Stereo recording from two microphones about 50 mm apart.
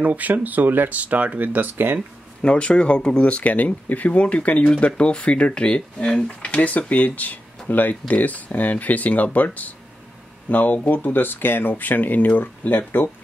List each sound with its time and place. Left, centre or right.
0.0 s speech: right
2.4 s speech: left
6.0 s speech: centre
6.4 s speech: left